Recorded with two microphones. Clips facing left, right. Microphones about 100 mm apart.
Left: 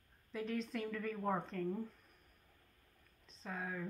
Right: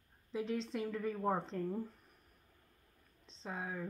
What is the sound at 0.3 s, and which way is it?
Speech, 20° right (ahead or behind).